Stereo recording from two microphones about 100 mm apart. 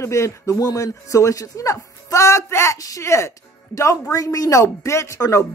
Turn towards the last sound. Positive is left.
turn(degrees=30)  # may be behind; listen again after turning